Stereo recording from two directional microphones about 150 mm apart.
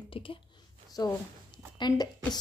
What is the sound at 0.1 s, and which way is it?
Speech, 35° left (ahead or behind).